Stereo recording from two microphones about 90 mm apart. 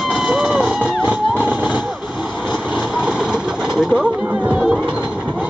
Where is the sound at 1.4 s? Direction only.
15° right (ahead or behind).